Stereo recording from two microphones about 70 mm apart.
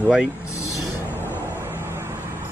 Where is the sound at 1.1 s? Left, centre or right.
Left.